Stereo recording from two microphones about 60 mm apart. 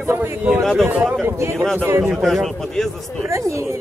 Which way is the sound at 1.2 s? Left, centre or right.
Right.